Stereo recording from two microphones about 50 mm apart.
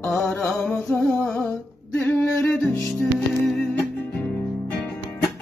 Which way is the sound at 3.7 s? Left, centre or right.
Left.